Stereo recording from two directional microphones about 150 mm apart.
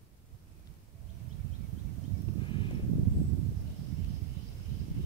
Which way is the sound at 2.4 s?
35° left (ahead or behind).